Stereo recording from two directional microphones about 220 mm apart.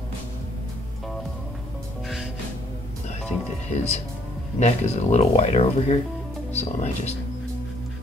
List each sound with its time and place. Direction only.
3.7 s speech: 30° left (ahead or behind)